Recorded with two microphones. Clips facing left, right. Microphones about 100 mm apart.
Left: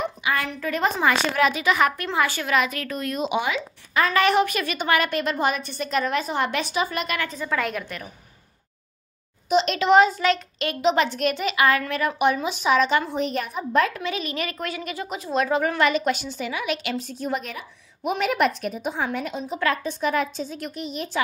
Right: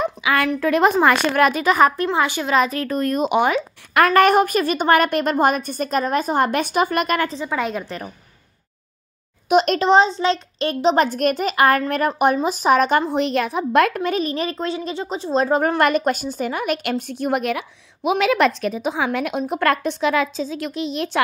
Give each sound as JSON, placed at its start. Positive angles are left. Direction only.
{"t": 0.2, "sound": "a sound", "side_deg": -90}
{"t": 0.5, "sound": "a woman's voice", "side_deg": -70}
{"t": 2.1, "sound": "a woman's voice", "side_deg": -20}
{"t": 2.5, "sound": "a woman's voice", "side_deg": -35}
{"t": 7.3, "sound": "a woman's voice", "side_deg": -20}
{"t": 9.5, "sound": "a child's voice", "side_deg": -55}
{"t": 9.8, "sound": "a woman's voice", "side_deg": -30}
{"t": 13.1, "sound": "a woman's voice", "side_deg": -85}
{"t": 15.8, "sound": "a woman's voice", "side_deg": -50}